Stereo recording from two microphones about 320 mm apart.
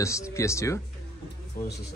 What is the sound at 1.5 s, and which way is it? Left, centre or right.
Speech, left.